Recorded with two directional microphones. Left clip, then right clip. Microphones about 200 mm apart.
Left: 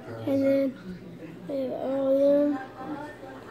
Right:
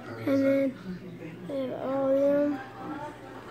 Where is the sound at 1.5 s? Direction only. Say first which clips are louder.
Left 2 dB; 5° left (ahead or behind).